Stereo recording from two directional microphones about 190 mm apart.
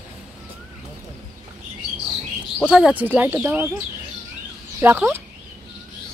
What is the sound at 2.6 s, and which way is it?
Speech, 5° right (ahead or behind).